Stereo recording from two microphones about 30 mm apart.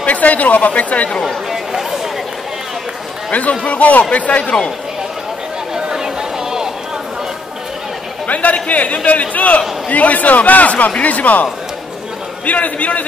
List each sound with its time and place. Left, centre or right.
0.0 s a woman's voice: left
1.2 s chatter: centre
3.3 s a woman's voice: left
5.8 s chatter: right
8.3 s a woman's voice: left
12.4 s a woman's voice: left